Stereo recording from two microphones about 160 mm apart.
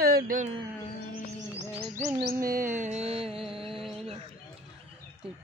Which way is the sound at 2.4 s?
60° right (ahead or behind).